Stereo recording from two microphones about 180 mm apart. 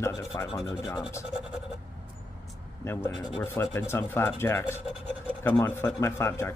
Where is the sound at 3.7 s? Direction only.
15° left (ahead or behind).